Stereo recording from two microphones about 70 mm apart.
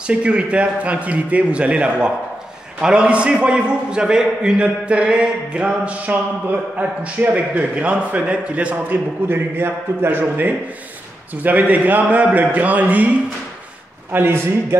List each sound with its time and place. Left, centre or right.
0.0 s a man's voice: centre
9.3 s a man's voice: right
14.1 s a man's voice: right